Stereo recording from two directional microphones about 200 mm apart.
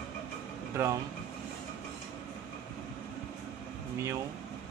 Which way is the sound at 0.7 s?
10° right (ahead or behind).